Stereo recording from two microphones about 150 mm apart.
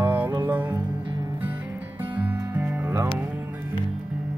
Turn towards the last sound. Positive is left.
turn(degrees=-15)  # may be behind; listen again after turning